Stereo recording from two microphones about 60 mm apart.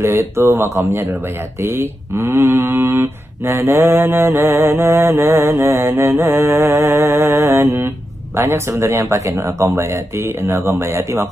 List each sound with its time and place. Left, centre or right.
0.0 s mantra: right
1.6 s speech: right
5.4 s mantra: right
8.4 s speech: right